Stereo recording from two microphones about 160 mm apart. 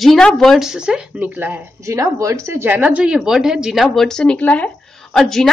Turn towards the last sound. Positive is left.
turn(degrees=0)  # may be behind; listen again after turning